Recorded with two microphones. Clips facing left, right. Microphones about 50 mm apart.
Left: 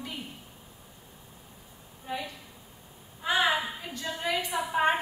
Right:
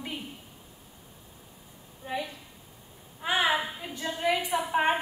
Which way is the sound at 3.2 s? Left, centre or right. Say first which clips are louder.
Left 1 dB; right.